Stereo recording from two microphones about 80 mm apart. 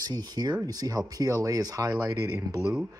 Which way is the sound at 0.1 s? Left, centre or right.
Right.